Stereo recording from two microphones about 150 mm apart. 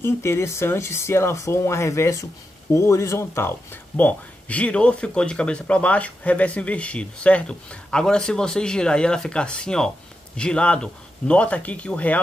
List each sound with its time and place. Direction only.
0.0 s speech: 15° left (ahead or behind)